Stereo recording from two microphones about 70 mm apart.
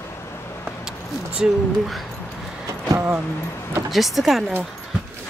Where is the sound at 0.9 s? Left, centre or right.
Centre.